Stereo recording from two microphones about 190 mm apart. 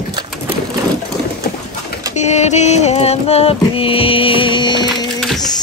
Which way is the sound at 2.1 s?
35° left (ahead or behind).